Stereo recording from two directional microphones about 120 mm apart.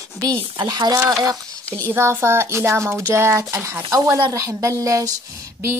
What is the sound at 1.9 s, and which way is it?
Speech, 20° right (ahead or behind).